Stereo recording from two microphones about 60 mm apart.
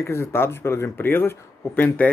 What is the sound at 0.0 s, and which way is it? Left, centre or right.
Speech, left.